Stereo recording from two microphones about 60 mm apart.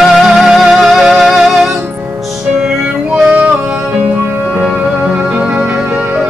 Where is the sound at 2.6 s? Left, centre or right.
Centre.